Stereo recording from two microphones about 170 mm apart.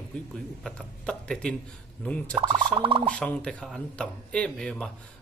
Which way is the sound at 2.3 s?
25° right (ahead or behind).